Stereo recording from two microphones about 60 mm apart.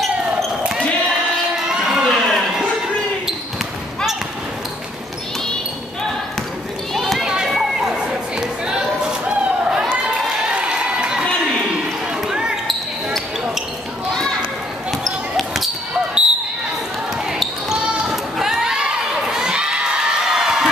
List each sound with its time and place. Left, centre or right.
1.7 s a sound: centre
6.9 s run: centre
7.4 s a sound: centre
8.0 s chatter: centre
9.7 s a sound: centre
10.5 s crowd: centre
12.3 s basketball bounce: centre
14.9 s basketball bounce: centre
16.2 s basketball bounce: centre
17.3 s basketball bounce: centre